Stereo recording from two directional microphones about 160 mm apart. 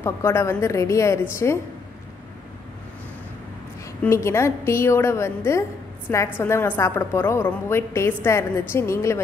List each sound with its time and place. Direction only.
0.0 s a woman's voice: 15° left (ahead or behind)
4.0 s a woman's voice: 15° left (ahead or behind)